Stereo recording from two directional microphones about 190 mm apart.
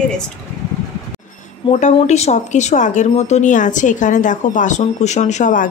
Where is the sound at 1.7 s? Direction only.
35° left (ahead or behind).